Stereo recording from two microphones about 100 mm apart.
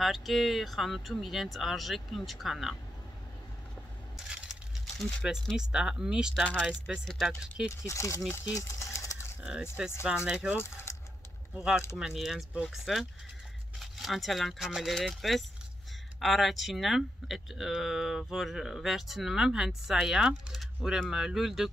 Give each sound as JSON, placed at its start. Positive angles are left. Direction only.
{"t": 0.0, "sound": "speech", "side_deg": 0}
{"t": 4.9, "sound": "speech", "side_deg": 10}
{"t": 7.8, "sound": "speech", "side_deg": 30}
{"t": 8.5, "sound": "a sound", "side_deg": 30}
{"t": 9.4, "sound": "speech", "side_deg": -10}
{"t": 10.6, "sound": "keys jangling", "side_deg": 25}
{"t": 11.5, "sound": "speech", "side_deg": -10}